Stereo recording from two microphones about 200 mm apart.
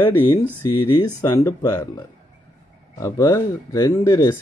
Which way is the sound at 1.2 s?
15° left (ahead or behind).